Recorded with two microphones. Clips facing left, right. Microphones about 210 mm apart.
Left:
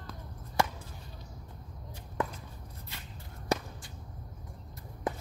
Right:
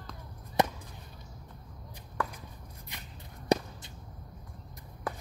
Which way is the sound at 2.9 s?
15° right (ahead or behind).